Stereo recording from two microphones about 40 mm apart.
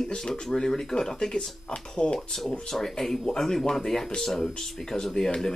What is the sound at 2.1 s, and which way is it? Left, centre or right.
Speech, centre.